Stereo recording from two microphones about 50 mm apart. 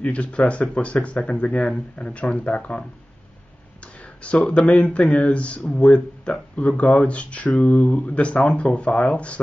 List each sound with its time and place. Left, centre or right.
0.0 s speech: left
4.2 s speech: left